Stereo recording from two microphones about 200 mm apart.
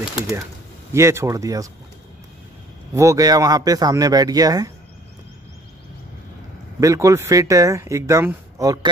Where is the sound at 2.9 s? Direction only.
15° right (ahead or behind).